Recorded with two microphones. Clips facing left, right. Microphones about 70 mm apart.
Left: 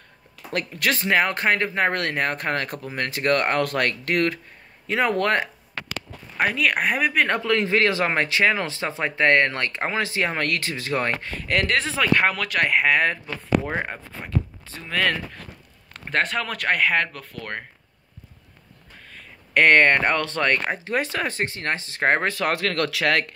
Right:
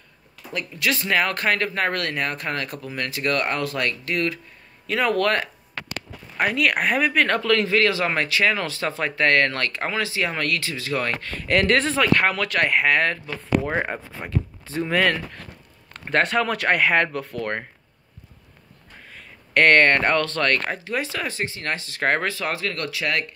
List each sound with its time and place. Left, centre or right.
0.7 s speech: left
1.0 s speech: left
4.8 s speech: left
6.3 s speech: centre
7.2 s speech: centre
11.2 s speech: centre
13.7 s speech: centre
15.0 s speech: centre
19.1 s speech: centre
20.8 s speech: left
22.3 s speech: left